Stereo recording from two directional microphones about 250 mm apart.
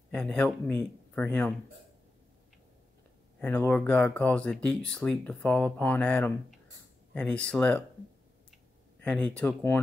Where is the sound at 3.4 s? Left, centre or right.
Centre.